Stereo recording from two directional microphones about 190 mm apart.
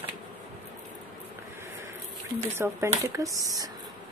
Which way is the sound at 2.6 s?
15° right (ahead or behind).